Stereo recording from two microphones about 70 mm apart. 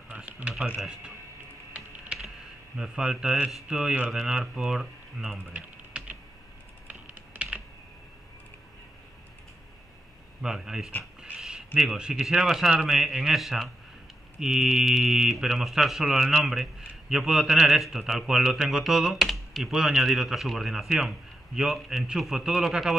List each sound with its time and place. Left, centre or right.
0.1 s speech: centre
0.7 s speech: centre
2.1 s typing: centre
2.8 s speech: centre
5.9 s typing: centre
10.4 s speech: centre
11.1 s a sound: centre
11.8 s speech: centre